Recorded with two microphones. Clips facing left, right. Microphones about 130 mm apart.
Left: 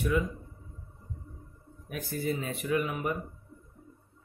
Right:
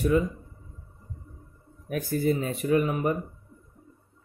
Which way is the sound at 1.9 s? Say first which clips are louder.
Right 7 dB; 45° right (ahead or behind).